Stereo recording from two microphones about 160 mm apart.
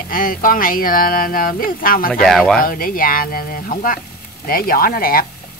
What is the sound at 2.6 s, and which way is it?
Speech, 65° left (ahead or behind).